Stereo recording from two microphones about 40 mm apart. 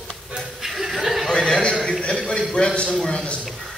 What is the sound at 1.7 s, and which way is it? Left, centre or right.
Speech, centre.